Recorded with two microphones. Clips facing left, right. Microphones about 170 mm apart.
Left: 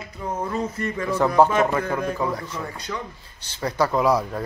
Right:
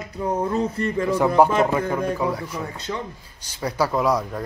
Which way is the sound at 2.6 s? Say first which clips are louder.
Right 2 dB; 25° right (ahead or behind).